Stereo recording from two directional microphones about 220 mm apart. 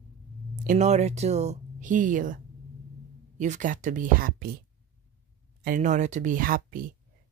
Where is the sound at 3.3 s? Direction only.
35° right (ahead or behind).